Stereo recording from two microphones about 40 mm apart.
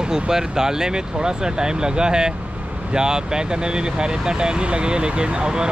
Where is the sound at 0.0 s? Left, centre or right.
Centre.